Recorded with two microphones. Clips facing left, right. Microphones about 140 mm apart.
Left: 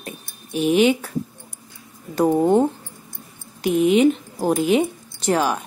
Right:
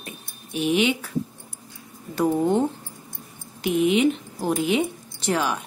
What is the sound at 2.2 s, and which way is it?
Speech, 40° left (ahead or behind).